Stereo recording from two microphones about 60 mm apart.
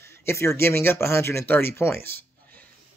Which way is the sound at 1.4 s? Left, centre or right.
Left.